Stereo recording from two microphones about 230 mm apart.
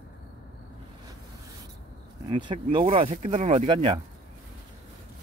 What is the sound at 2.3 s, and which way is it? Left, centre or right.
Speech, right.